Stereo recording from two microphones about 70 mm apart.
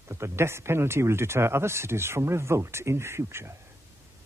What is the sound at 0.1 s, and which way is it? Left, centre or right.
Speech, right.